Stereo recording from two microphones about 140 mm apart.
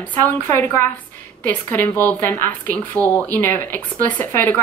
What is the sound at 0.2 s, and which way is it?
Speech, 15° left (ahead or behind).